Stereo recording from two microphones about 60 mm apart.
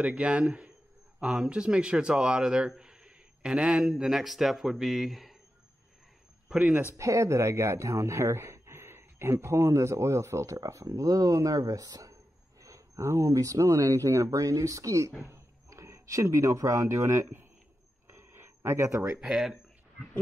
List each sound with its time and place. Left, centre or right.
0.0 s speech: centre
2.8 s a sound: centre
4.0 s a man's voice: centre
6.6 s speech: right
7.0 s speech: right
18.0 s a sound: right
19.2 s a man's voice: centre